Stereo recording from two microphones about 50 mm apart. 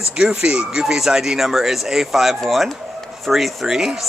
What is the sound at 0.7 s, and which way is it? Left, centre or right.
Speech, centre.